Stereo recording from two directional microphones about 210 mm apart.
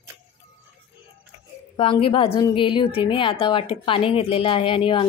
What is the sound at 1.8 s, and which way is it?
A woman's voice, 25° left (ahead or behind).